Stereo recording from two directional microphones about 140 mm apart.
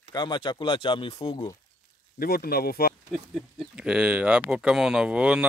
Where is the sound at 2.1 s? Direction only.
90° left.